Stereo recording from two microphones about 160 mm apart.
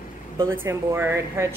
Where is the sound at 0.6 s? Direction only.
15° right (ahead or behind).